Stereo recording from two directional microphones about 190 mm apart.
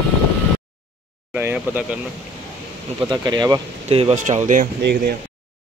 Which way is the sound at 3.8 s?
35° right (ahead or behind).